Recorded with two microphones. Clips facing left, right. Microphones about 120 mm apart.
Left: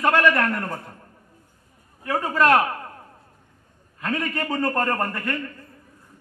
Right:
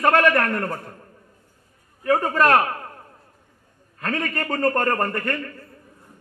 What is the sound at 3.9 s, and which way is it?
A man's voice, 50° right (ahead or behind).